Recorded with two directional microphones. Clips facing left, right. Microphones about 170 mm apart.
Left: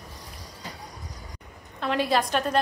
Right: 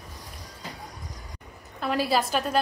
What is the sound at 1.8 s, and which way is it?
Speech, 5° right (ahead or behind).